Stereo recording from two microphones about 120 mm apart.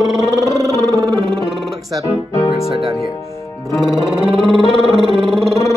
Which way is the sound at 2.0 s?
25° left (ahead or behind).